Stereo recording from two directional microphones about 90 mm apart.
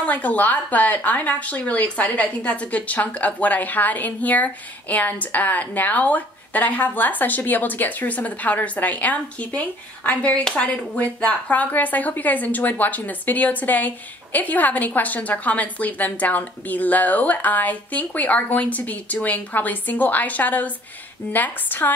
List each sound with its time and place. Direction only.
0.0 s a woman's voice: 15° left (ahead or behind)